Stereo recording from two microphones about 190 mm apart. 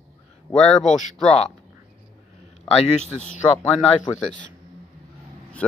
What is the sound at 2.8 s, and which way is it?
Speech, 35° left (ahead or behind).